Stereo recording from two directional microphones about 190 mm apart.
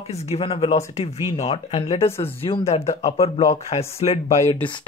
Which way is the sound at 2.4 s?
30° left (ahead or behind).